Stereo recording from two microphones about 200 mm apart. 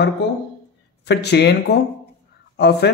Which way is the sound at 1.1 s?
55° left (ahead or behind).